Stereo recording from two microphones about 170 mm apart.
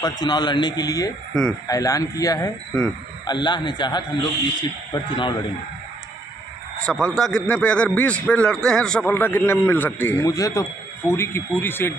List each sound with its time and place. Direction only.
0.0 s speech: 25° left (ahead or behind)
6.9 s a man's voice: 5° left (ahead or behind)